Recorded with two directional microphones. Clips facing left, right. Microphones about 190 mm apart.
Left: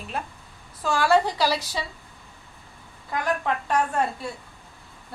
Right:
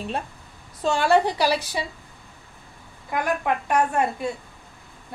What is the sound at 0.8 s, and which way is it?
Speech, 20° right (ahead or behind).